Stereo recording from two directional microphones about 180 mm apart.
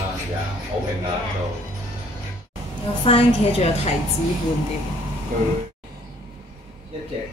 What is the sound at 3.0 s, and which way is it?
Speech, 30° left (ahead or behind).